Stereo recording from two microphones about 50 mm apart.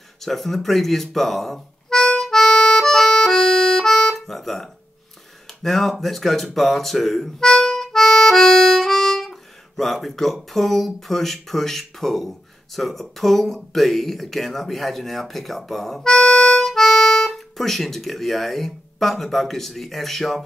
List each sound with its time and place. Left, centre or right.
0.2 s speech: centre
2.2 s music: centre
5.6 s speech: centre
7.4 s harmonica: centre
16.1 s harmonica: centre
16.6 s speech: centre